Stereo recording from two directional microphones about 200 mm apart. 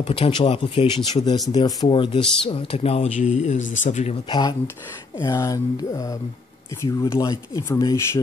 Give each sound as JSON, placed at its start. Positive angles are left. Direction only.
{"t": 0.0, "sound": "speech", "side_deg": 25}